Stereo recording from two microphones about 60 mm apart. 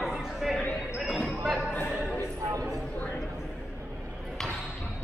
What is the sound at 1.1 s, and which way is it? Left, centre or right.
Basketball bounce, centre.